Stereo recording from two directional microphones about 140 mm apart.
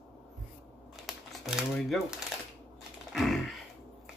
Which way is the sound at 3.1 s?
Centre (ahead or behind).